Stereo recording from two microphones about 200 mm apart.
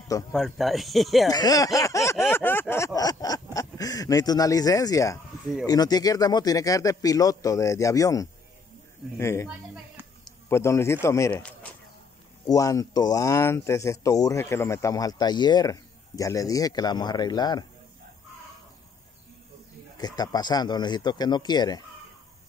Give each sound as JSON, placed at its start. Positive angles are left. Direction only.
{"t": 0.3, "sound": "speech", "side_deg": 0}
{"t": 1.3, "sound": "speech", "side_deg": 20}
{"t": 2.3, "sound": "a sound", "side_deg": 10}
{"t": 2.7, "sound": "speech", "side_deg": 15}
{"t": 20.0, "sound": "speech", "side_deg": 20}